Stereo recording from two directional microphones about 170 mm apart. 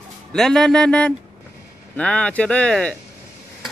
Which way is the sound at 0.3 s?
5° left (ahead or behind).